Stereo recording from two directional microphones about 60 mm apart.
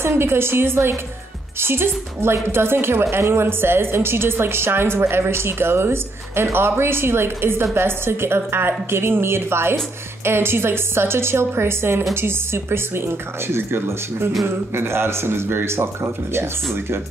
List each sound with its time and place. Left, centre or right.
0.0 s a woman's voice: right